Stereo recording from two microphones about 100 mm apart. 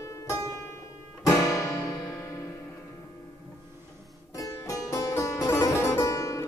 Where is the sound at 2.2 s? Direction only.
30° left (ahead or behind).